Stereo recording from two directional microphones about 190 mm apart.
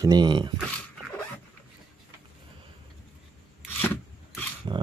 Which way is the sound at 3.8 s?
10° left (ahead or behind).